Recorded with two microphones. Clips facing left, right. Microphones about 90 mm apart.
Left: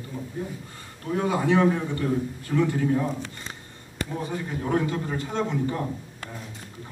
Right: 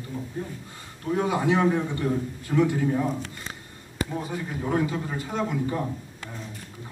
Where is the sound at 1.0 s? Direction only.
10° right (ahead or behind).